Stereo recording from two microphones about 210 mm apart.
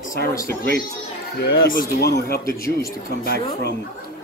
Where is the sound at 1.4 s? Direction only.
45° left (ahead or behind).